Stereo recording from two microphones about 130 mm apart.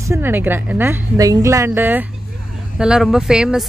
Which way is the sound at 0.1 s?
15° right (ahead or behind).